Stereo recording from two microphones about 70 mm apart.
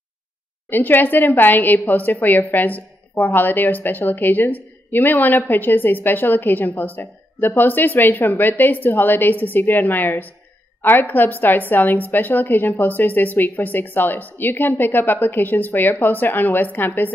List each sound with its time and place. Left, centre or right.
0.7 s a woman's voice: left